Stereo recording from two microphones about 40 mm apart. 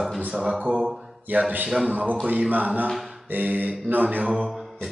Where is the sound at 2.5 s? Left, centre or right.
Right.